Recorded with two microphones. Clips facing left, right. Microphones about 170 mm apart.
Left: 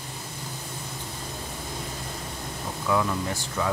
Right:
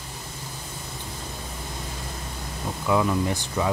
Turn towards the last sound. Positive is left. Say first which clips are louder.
# right 3 dB
turn(degrees=-15)  # may be behind; listen again after turning